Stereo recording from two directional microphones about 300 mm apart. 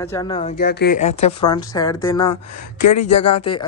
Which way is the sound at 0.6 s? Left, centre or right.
Left.